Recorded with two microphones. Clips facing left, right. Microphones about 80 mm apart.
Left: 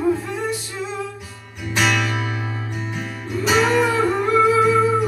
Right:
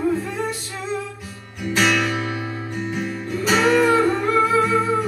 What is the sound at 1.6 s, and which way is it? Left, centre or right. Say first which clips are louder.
Music: right 1 dB; centre.